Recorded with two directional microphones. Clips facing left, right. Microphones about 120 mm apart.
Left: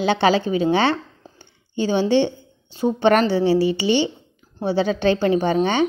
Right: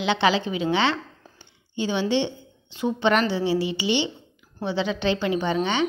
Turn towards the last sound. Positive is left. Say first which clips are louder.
# left 6 dB
turn(degrees=45)  # may be behind; listen again after turning